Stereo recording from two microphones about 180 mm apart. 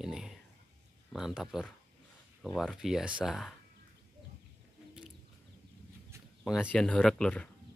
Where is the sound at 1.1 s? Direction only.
Centre (ahead or behind).